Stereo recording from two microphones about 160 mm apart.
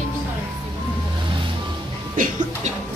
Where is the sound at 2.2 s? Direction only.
60° right (ahead or behind).